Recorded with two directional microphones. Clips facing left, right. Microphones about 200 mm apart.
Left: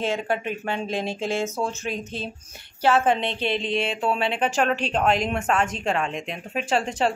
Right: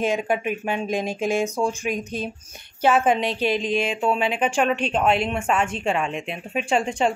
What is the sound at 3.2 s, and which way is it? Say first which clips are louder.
Speech: right 3 dB; 30° left (ahead or behind).